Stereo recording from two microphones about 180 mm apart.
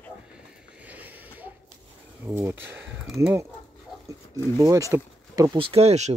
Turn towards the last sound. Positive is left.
turn(degrees=-35)  # may be behind; listen again after turning